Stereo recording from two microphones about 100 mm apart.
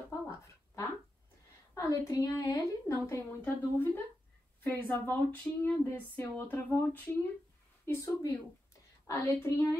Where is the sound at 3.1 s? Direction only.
20° left (ahead or behind).